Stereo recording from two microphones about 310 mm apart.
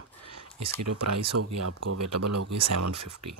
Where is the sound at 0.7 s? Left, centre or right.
Right.